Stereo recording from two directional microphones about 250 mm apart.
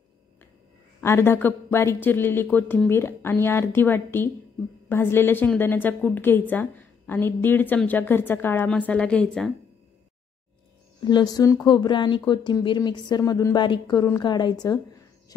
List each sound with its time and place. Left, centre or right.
1.0 s speech: centre
11.1 s speech: centre